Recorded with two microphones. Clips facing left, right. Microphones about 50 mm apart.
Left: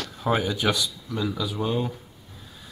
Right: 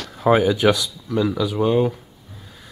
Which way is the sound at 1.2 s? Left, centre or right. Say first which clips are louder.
Right 7 dB; right.